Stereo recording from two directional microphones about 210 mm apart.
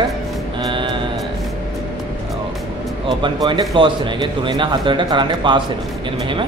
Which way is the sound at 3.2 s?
20° right (ahead or behind).